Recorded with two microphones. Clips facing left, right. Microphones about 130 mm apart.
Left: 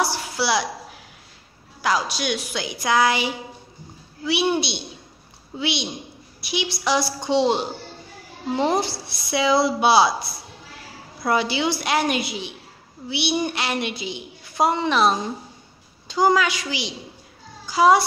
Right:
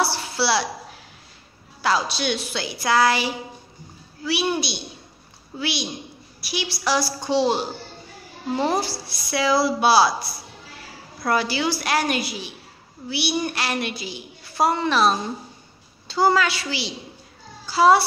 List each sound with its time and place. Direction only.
0.0 s a woman's voice: 15° left (ahead or behind)
1.8 s a woman's voice: 15° left (ahead or behind)
11.2 s a woman's voice: 20° left (ahead or behind)